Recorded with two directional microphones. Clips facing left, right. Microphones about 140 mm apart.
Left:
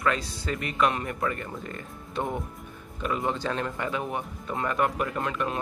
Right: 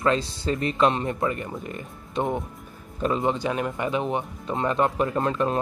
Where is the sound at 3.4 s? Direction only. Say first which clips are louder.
Right 3 dB; 15° right (ahead or behind).